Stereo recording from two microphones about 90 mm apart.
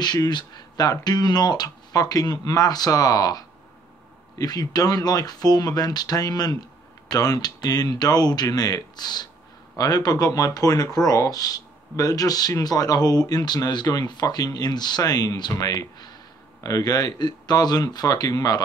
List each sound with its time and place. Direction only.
0.0 s speech: 50° left (ahead or behind)